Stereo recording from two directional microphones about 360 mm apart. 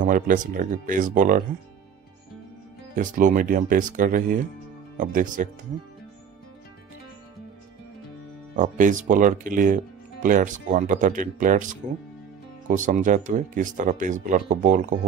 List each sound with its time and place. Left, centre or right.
0.0 s speech: right
3.0 s speech: right
8.5 s speech: right